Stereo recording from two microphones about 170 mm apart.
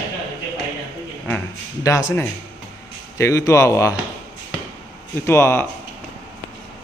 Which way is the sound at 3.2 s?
15° left (ahead or behind).